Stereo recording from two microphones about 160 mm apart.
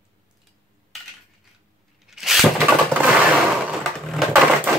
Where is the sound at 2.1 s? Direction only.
Centre (ahead or behind).